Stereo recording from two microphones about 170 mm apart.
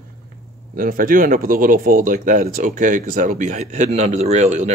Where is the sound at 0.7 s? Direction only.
55° right (ahead or behind).